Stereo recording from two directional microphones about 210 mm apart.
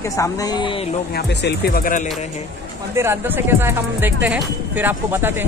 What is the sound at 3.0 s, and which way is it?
Speech, 10° right (ahead or behind).